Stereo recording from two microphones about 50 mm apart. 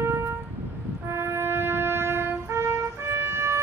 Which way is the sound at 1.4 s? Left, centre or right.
Right.